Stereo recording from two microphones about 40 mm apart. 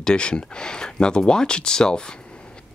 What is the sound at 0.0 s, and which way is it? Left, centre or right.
Speech, left.